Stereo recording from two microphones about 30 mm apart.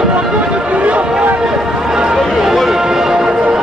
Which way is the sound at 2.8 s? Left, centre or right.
Centre.